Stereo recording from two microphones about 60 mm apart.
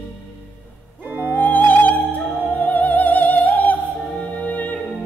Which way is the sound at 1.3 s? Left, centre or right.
Left.